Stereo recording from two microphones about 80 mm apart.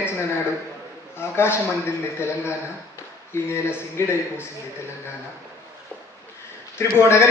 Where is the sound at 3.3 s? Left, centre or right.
Left.